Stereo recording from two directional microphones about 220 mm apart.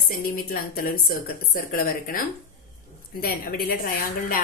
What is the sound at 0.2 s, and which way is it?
A woman's voice, 40° left (ahead or behind).